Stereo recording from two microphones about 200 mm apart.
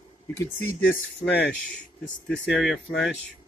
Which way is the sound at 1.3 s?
60° left (ahead or behind).